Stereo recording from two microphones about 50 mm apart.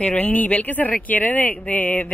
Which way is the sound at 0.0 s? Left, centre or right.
Left.